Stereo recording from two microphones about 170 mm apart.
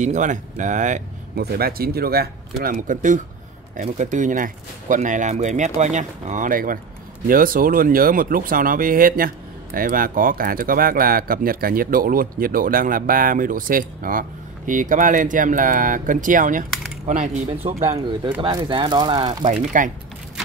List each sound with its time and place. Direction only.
0.0 s speech: 45° right (ahead or behind)
1.3 s speech: 65° right (ahead or behind); by 17.8 s 45° right (ahead or behind)
18.4 s speech: 30° right (ahead or behind)
19.5 s speech: 50° right (ahead or behind)